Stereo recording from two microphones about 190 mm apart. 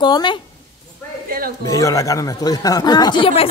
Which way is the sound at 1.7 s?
15° left (ahead or behind).